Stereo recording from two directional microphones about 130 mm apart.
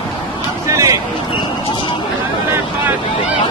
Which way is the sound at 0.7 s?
25° right (ahead or behind).